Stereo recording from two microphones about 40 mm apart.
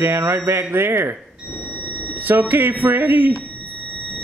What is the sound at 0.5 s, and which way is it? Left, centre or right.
Speech, right.